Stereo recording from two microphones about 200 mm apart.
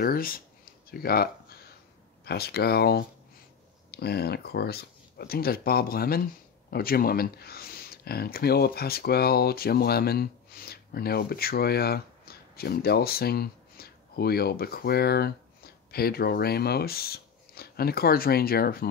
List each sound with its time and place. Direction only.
0.0 s speech: 45° left (ahead or behind)